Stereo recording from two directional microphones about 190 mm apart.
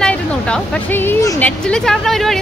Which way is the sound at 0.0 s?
5° left (ahead or behind).